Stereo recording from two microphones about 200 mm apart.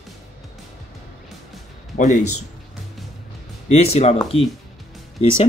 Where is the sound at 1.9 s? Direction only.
40° left (ahead or behind).